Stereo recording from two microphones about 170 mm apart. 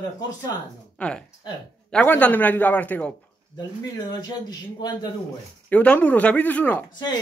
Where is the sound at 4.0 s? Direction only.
25° left (ahead or behind).